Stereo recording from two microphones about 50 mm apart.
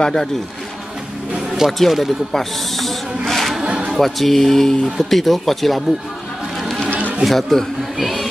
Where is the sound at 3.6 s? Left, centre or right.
Centre.